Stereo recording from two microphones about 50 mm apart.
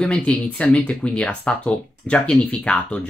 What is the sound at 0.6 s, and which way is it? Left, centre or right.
Speech, left.